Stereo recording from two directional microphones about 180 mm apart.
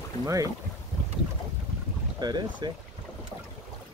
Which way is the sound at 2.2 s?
25° right (ahead or behind).